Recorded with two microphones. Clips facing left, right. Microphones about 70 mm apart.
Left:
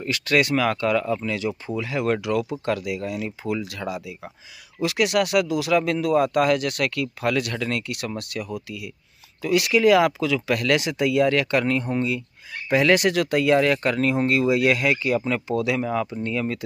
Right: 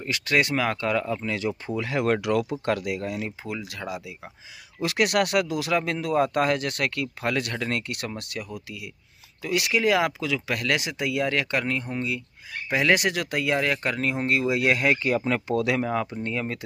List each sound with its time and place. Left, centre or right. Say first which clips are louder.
0.0 s speech: left 3 dB; right
1.8 s speech: even; right
3.4 s speech: left 5 dB; right
4.8 s speech: left 2 dB; right
8.2 s speech: left 4 dB; right; by 12.2 s centre
12.6 s speech: left 4 dB; centre
15.0 s speech: left 1 dB; right
16.1 s speech: left 3 dB; right